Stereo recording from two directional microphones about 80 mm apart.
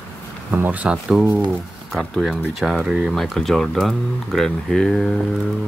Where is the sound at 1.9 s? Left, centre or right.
Centre.